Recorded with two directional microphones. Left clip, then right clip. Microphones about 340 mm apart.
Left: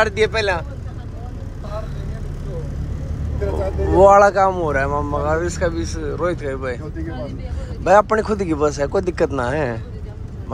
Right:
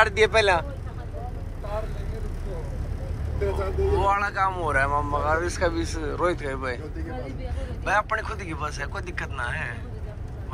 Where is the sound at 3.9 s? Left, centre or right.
Centre.